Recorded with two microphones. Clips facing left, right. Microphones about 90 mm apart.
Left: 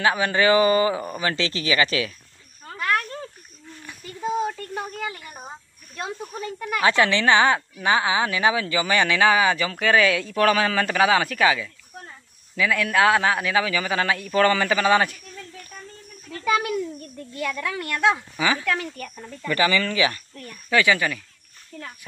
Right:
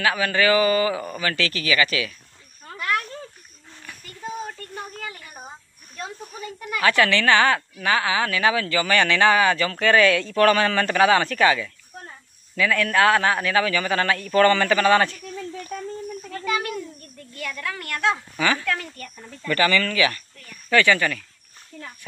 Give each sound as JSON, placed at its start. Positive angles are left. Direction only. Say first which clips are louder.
{"t": 0.0, "sound": "speech", "louder": "left 1 dB", "side_deg": 25}
{"t": 3.8, "sound": "a sound", "louder": "left 6 dB", "side_deg": 15}
{"t": 4.9, "sound": "speech", "louder": "left 4 dB", "side_deg": 10}
{"t": 6.8, "sound": "speech", "louder": "even", "side_deg": 20}
{"t": 17.3, "sound": "speech", "louder": "left 3 dB", "side_deg": 20}
{"t": 21.7, "sound": "speech", "louder": "left 1 dB", "side_deg": -5}